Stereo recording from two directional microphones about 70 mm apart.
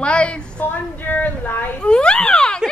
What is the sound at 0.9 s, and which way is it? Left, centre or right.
Speech, left.